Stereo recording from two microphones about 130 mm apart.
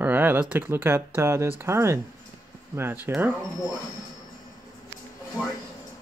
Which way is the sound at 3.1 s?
15° right (ahead or behind).